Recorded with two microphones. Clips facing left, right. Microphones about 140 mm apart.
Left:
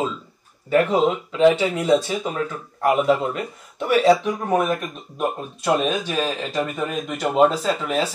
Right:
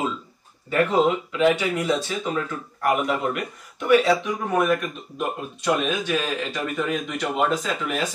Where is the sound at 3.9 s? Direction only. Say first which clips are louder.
Left 2 dB; 40° left (ahead or behind).